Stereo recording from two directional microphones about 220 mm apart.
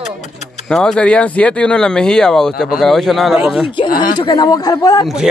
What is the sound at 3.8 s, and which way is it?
Speech, 40° left (ahead or behind).